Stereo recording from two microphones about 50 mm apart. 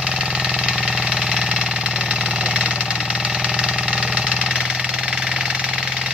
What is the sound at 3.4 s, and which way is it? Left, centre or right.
Engine, centre.